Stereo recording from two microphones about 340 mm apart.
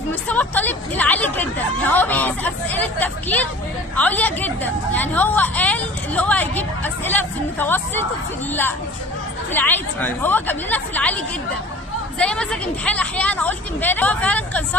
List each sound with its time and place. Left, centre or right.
0.1 s a woman's voice: centre
9.5 s a woman's voice: centre